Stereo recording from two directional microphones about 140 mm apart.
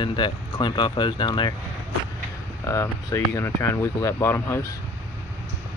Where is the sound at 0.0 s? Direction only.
35° left (ahead or behind).